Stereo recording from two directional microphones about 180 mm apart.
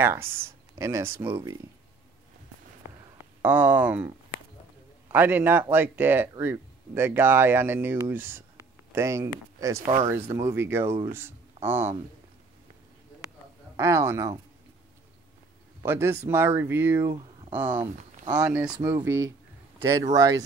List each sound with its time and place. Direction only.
0.0 s speech: 15° right (ahead or behind)
3.4 s speech: 10° right (ahead or behind)
5.1 s speech: 10° right (ahead or behind)
13.7 s speech: 15° right (ahead or behind)
15.8 s speech: 10° right (ahead or behind)